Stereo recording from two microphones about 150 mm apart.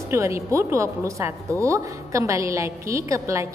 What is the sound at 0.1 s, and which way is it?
A woman's voice, 20° right (ahead or behind).